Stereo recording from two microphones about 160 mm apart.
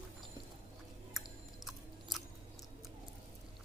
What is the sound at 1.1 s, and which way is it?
Chewing, centre (ahead or behind).